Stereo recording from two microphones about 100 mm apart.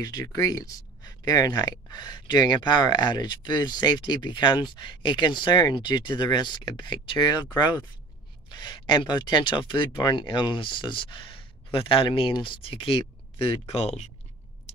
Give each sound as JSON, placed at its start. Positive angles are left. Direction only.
{"t": 0.0, "sound": "speech", "side_deg": 40}
{"t": 13.5, "sound": "speech", "side_deg": 90}